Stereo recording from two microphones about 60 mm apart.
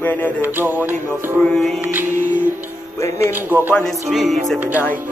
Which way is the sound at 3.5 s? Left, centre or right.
Right.